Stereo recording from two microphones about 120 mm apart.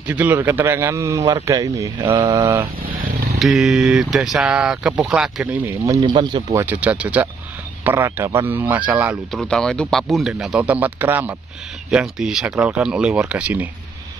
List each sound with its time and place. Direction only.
0.0 s speech: 15° right (ahead or behind)
2.0 s speech: 40° right (ahead or behind)
2.3 s speech: 25° right (ahead or behind)
3.3 s speech: 5° right (ahead or behind)
5.5 s speech: 25° right (ahead or behind)
5.9 s speech: 40° right (ahead or behind)
6.5 s speech: 15° right (ahead or behind)
9.3 s speech: 5° left (ahead or behind); by 13.7 s 10° right (ahead or behind)